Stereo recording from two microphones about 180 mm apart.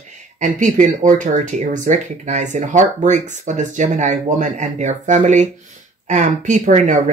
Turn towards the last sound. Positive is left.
turn(degrees=-45)  # may be behind; listen again after turning